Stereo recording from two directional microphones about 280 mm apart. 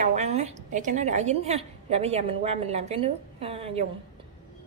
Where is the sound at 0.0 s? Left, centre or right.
Right.